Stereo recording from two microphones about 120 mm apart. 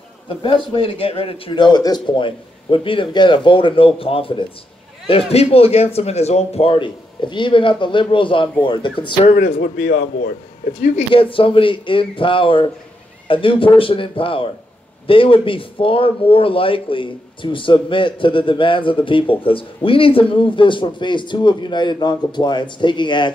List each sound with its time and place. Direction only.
0.3 s speech: 50° left (ahead or behind)
9.2 s speech: 60° left (ahead or behind)
11.1 s speech: 50° left (ahead or behind)